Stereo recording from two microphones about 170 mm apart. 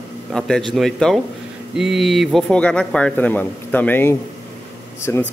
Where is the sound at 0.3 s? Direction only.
5° left (ahead or behind).